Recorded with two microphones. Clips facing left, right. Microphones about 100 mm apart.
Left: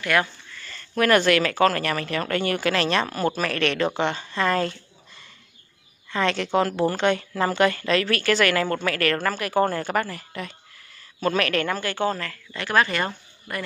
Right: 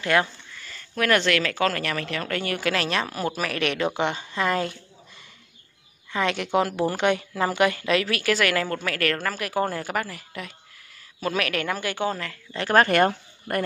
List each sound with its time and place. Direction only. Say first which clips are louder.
0.0 s speech: right 1 dB; 25° right (ahead or behind)
0.6 s speech: left 4 dB; 5° right (ahead or behind)
6.1 s speech: left 1 dB; 10° right (ahead or behind)
12.5 s speech: right 4 dB; 40° right (ahead or behind)